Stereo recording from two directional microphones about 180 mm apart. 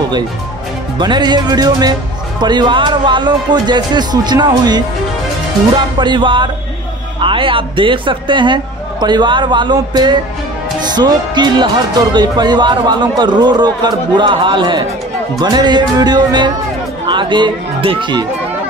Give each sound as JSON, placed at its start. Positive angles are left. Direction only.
{"t": 0.9, "sound": "speech", "side_deg": -25}
{"t": 5.9, "sound": "speech", "side_deg": -25}